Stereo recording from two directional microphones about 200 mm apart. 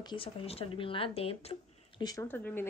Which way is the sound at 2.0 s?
10° left (ahead or behind).